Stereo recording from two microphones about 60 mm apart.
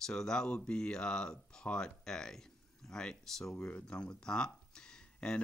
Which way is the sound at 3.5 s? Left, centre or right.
Centre.